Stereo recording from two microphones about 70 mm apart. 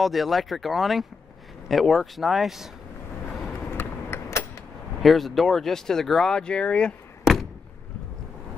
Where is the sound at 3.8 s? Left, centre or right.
Left.